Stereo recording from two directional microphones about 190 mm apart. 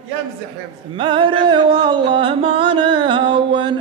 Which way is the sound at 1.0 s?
25° right (ahead or behind).